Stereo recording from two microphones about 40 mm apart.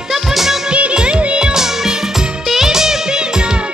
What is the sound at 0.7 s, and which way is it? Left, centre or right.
Music, right.